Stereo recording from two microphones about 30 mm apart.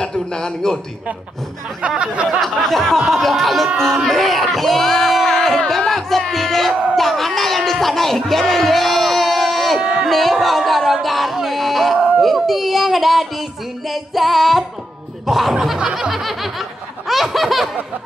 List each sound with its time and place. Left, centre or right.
0.0 s a sound: left
1.8 s speech: right
2.4 s speech: centre
5.2 s a sound: centre
5.7 s music: centre
6.3 s speech: centre
15.5 s snicker: centre
15.8 s snicker: right
16.1 s speech: centre